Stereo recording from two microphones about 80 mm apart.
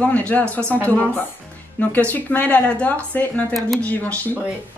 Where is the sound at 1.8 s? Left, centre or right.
Left.